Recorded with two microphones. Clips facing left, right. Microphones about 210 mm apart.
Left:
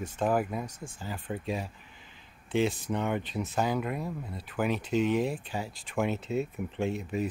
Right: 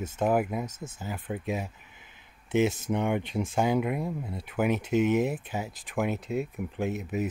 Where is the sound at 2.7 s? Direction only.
10° right (ahead or behind).